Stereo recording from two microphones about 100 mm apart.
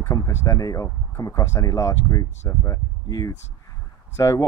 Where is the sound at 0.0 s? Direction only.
25° left (ahead or behind).